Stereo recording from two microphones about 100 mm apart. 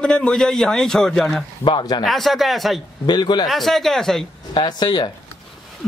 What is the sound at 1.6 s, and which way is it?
Speech, 50° left (ahead or behind).